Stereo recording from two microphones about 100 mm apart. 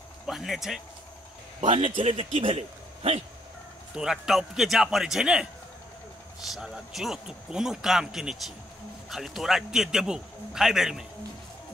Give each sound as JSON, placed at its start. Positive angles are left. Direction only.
{"t": 0.3, "sound": "speech", "side_deg": 0}
{"t": 1.8, "sound": "a man's voice", "side_deg": -75}
{"t": 3.9, "sound": "speech", "side_deg": -5}
{"t": 6.5, "sound": "speech", "side_deg": -5}